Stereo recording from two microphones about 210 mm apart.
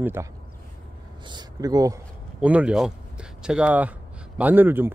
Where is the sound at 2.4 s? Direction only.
5° right (ahead or behind).